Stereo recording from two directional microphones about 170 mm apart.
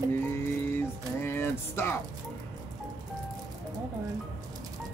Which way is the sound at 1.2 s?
15° left (ahead or behind).